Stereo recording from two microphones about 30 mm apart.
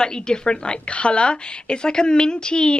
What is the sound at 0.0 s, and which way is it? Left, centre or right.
A woman's voice, left.